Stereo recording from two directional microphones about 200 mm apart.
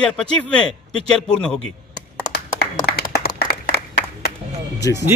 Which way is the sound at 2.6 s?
50° left (ahead or behind).